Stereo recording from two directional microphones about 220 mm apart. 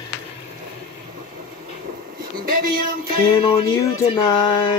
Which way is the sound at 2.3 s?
40° right (ahead or behind).